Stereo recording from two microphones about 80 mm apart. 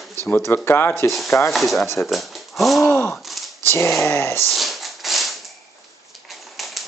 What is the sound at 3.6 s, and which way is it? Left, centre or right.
Speech, left.